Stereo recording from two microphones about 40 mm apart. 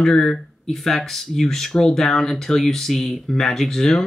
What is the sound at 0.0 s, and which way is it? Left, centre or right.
Speech, centre.